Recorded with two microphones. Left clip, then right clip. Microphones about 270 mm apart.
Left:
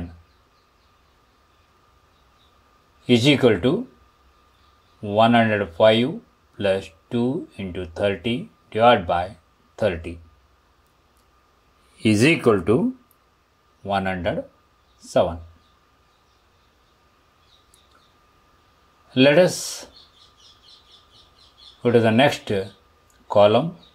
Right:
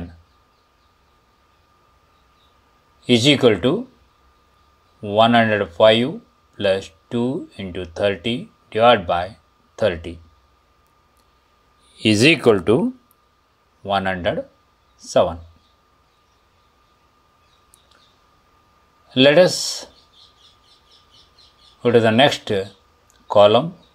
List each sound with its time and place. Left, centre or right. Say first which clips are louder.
3.1 s speech: right 2 dB; centre
5.0 s speech: right 2 dB; centre
11.9 s speech: right 4 dB; centre
12.4 s speech: right 3 dB; right
13.8 s speech: right 3 dB; centre
19.0 s speech: right 3 dB; centre
21.8 s speech: right 3 dB; centre